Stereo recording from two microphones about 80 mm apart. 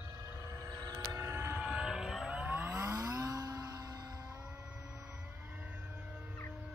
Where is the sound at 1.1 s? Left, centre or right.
Right.